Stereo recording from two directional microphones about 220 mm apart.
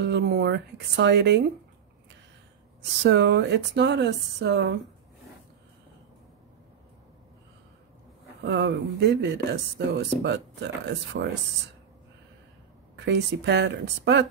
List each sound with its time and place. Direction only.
0.0 s speech: 50° right (ahead or behind)
2.8 s speech: 50° right (ahead or behind)
8.4 s speech: 50° right (ahead or behind)
12.9 s speech: 50° right (ahead or behind)